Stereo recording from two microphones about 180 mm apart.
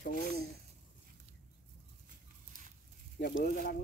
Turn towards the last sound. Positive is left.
turn(degrees=55)  # may be behind; listen again after turning